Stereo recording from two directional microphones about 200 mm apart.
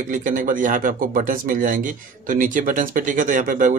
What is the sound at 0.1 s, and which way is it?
Speech, 40° right (ahead or behind).